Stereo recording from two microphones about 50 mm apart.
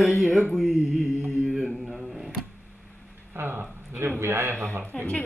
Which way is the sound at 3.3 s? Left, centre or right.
Right.